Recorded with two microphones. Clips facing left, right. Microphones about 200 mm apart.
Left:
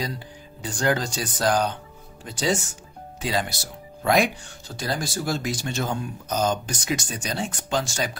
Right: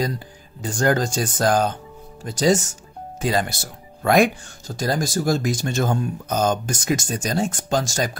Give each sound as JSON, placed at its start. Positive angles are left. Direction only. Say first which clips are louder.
{"t": 0.6, "sound": "speech", "louder": "right 4 dB", "side_deg": -45}